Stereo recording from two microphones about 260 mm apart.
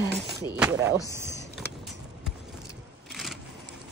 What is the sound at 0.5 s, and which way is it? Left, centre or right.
Speech, centre.